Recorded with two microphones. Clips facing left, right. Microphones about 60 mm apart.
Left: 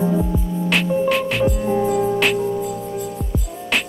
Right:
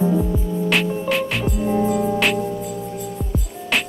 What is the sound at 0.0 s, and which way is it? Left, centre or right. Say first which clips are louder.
Music: even; centre.